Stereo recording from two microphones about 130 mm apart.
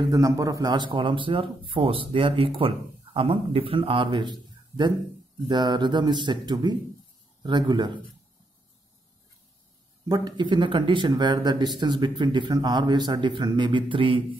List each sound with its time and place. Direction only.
0.0 s speech: 25° right (ahead or behind)
10.0 s speech: 30° right (ahead or behind)